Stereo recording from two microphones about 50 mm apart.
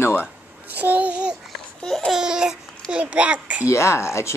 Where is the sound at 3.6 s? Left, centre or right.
Left.